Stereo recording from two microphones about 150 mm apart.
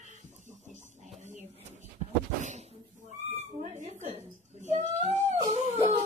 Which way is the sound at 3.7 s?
50° right (ahead or behind).